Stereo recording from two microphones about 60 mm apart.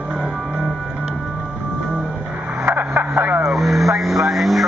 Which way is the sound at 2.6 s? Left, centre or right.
Right.